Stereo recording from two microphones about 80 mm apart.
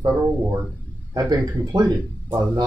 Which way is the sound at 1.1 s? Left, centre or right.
Right.